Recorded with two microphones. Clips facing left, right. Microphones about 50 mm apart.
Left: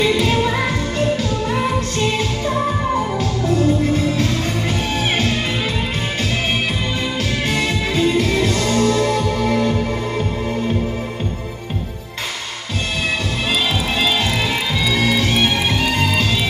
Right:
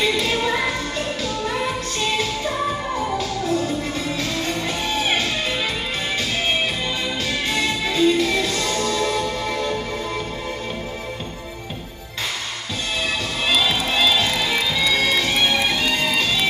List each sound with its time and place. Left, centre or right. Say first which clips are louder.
0.0 s music: left 4 dB; left
3.2 s music: left 4 dB; left
7.4 s music: left 2 dB; left
15.5 s music: left 2 dB; left